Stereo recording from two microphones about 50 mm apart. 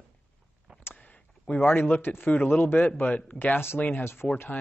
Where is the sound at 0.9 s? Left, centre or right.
Left.